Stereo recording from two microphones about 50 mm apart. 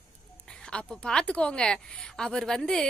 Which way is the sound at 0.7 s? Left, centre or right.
Centre.